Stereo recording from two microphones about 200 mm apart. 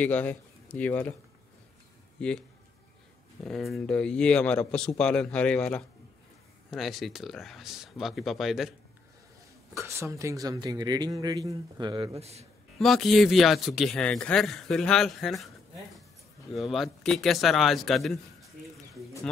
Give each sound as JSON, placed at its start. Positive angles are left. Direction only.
{"t": 0.0, "sound": "a man's voice", "side_deg": 5}
{"t": 2.1, "sound": "speech", "side_deg": 5}
{"t": 3.4, "sound": "a man's voice", "side_deg": 0}
{"t": 9.8, "sound": "a man's voice", "side_deg": -15}
{"t": 12.7, "sound": "a man's voice", "side_deg": 0}
{"t": 16.5, "sound": "a man's voice", "side_deg": 0}